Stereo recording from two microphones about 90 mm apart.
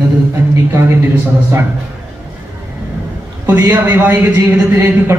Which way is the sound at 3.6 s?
25° right (ahead or behind).